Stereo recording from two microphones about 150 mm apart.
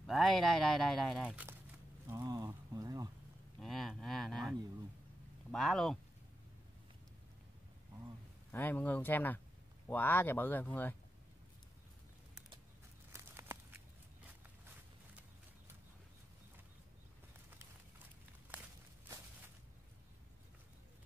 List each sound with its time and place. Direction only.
0.0 s speech: centre (ahead or behind)
2.0 s a sound: 20° right (ahead or behind)
3.5 s speech: centre (ahead or behind)
8.5 s speech: 15° left (ahead or behind)
13.1 s walk: 15° right (ahead or behind)